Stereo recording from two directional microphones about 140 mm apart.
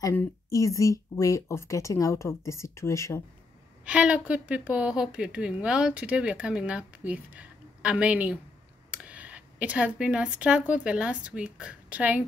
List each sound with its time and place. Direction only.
0.0 s speech: 20° left (ahead or behind)
3.8 s a woman's voice: 10° right (ahead or behind)